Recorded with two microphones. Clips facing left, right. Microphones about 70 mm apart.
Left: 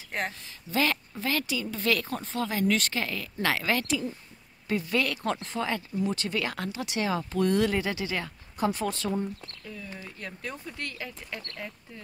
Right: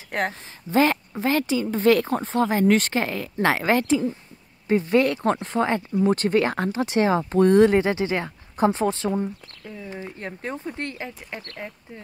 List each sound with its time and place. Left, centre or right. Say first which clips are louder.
0.3 s speech: right 8 dB; right